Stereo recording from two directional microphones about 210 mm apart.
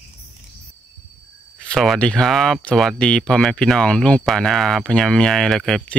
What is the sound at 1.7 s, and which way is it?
Speech, centre (ahead or behind).